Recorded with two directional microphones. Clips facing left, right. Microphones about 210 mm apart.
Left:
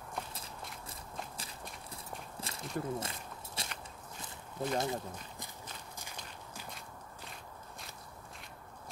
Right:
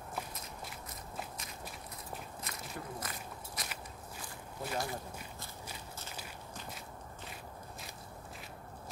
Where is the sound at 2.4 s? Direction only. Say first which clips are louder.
Left 5 dB; 30° left (ahead or behind).